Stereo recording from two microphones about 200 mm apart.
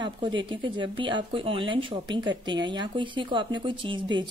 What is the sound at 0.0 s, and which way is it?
Speech, 25° right (ahead or behind).